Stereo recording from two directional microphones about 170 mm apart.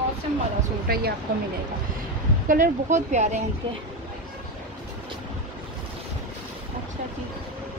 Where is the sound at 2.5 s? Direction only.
50° right (ahead or behind).